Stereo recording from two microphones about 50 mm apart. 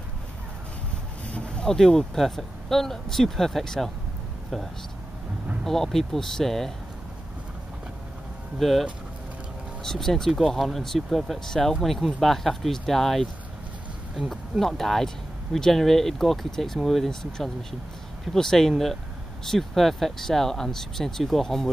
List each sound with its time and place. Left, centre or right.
1.3 s a sound: left
1.8 s speech: centre
5.6 s speech: centre
8.5 s speech: centre
9.8 s speech: centre